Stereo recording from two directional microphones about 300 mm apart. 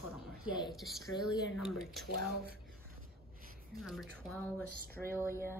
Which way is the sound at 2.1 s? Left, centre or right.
Right.